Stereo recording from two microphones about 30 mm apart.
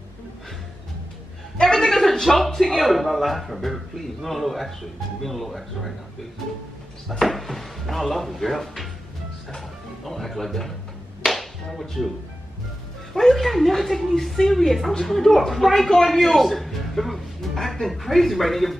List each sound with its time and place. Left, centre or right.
1.6 s a sound: centre
2.2 s a man's voice: centre
7.1 s a man's voice: centre
10.0 s a man's voice: centre
11.2 s music: centre
13.1 s a woman's voice: centre